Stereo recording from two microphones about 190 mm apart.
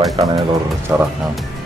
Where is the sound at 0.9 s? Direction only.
10° right (ahead or behind).